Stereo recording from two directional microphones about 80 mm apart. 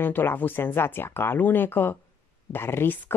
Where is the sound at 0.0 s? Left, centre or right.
Left.